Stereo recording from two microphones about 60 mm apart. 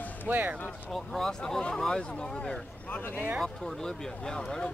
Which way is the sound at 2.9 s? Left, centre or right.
Left.